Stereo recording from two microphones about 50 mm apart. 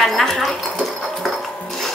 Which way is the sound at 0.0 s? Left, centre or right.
Centre.